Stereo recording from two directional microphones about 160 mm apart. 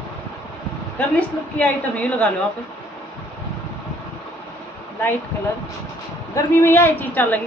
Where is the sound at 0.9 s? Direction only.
10° left (ahead or behind).